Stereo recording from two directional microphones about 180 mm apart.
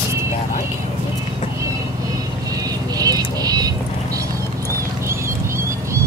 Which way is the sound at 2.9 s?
20° right (ahead or behind).